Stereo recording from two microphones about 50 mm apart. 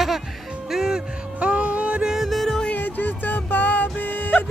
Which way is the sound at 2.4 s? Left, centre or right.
Centre.